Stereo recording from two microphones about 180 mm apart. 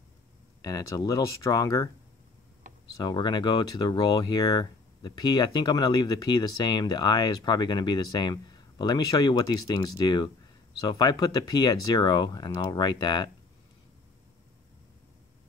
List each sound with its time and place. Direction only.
0.6 s speech: 20° left (ahead or behind)
3.0 s speech: 25° left (ahead or behind)